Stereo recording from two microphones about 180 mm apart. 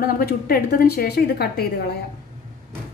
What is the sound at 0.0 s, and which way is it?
A woman's voice, 60° left (ahead or behind).